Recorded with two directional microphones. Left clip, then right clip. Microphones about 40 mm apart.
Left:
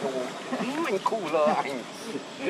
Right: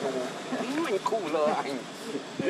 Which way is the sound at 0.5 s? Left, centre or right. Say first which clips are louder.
Left 1 dB; left.